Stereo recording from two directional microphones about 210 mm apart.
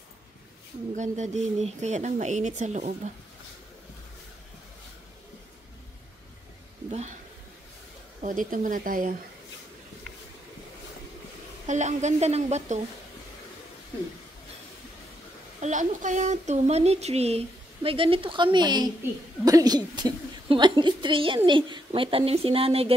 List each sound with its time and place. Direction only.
0.9 s speech: 35° right (ahead or behind)
6.9 s speech: 35° right (ahead or behind)
8.2 s speech: 40° right (ahead or behind)
11.6 s speech: 35° right (ahead or behind)
15.6 s speech: 35° right (ahead or behind)